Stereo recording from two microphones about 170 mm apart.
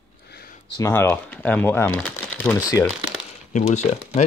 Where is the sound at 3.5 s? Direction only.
40° left (ahead or behind).